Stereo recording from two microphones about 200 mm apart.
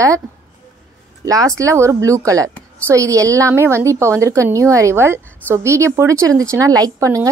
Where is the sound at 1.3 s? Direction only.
15° right (ahead or behind).